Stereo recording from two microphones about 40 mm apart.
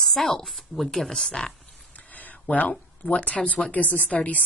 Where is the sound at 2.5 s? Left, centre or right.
Left.